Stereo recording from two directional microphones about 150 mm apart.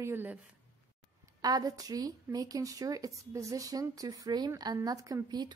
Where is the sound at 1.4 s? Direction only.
25° right (ahead or behind).